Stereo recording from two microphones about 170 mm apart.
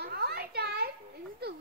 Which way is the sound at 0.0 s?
65° right (ahead or behind).